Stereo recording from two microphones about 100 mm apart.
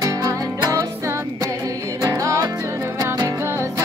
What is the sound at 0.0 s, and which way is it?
Music, 35° right (ahead or behind).